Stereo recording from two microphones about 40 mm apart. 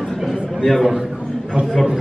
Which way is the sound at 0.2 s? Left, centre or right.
Centre.